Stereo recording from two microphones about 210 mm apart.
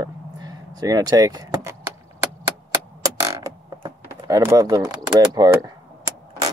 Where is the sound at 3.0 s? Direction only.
15° right (ahead or behind).